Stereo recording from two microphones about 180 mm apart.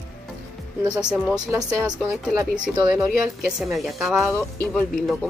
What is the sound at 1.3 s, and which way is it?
Speech, 20° right (ahead or behind).